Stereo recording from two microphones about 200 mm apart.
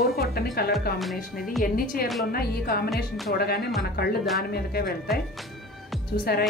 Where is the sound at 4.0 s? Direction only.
50° left (ahead or behind).